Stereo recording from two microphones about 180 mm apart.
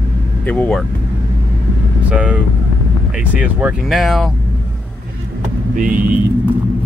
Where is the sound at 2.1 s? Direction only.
5° right (ahead or behind).